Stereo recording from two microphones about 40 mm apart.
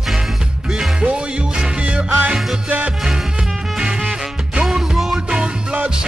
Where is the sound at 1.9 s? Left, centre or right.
Right.